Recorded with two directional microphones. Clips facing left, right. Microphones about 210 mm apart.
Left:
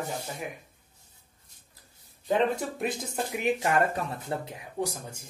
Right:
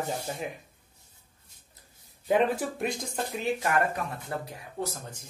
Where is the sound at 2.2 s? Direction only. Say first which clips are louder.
Right 1 dB; 5° right (ahead or behind).